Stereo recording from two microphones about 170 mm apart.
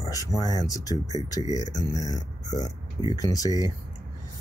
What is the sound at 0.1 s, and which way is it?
Speech, 20° left (ahead or behind).